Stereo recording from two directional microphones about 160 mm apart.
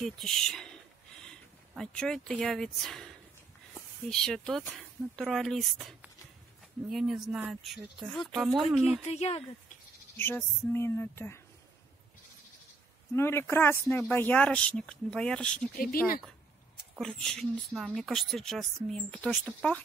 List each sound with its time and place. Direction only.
0.0 s speech: centre (ahead or behind)
4.1 s speech: 5° left (ahead or behind)
9.0 s speech: 40° left (ahead or behind)
10.1 s speech: 15° left (ahead or behind)
13.1 s speech: 15° left (ahead or behind)
15.7 s speech: 65° left (ahead or behind)
17.0 s speech: 5° left (ahead or behind)